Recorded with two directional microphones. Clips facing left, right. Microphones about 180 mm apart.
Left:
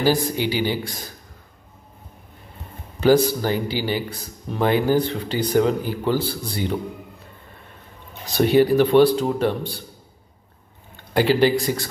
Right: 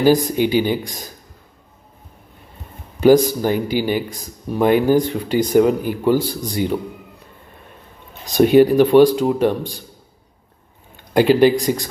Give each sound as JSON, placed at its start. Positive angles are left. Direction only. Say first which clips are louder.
{"t": 0.0, "sound": "speech", "louder": "right 5 dB", "side_deg": -15}
{"t": 3.0, "sound": "speech", "louder": "right 4 dB", "side_deg": -15}
{"t": 8.3, "sound": "speech", "louder": "right 5 dB", "side_deg": -15}
{"t": 11.1, "sound": "speech", "louder": "right 5 dB", "side_deg": -15}